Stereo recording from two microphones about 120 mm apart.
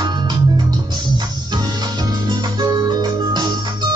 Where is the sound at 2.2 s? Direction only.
35° right (ahead or behind).